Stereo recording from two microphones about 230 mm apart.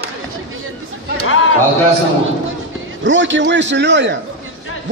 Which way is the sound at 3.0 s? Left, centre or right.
Right.